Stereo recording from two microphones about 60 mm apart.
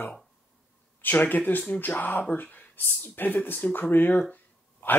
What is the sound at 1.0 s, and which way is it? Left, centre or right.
Speech, left.